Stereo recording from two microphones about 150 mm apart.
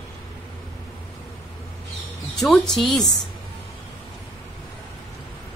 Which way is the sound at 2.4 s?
Centre (ahead or behind).